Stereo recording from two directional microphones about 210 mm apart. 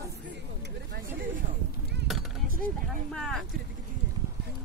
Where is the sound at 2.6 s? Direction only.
5° left (ahead or behind).